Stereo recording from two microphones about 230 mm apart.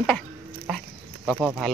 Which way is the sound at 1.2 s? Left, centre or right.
Centre.